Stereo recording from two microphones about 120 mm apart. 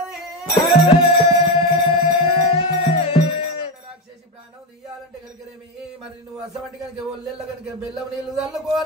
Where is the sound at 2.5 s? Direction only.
50° left (ahead or behind).